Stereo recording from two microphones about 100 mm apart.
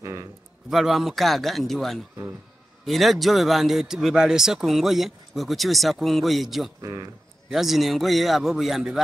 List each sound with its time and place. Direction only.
0.0 s a man's voice: 30° right (ahead or behind)
0.7 s speech: 5° right (ahead or behind)
6.8 s speech: 35° right (ahead or behind)
7.4 s speech: 5° right (ahead or behind)